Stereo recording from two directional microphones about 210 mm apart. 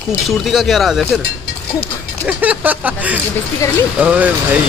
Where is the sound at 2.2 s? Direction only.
5° right (ahead or behind).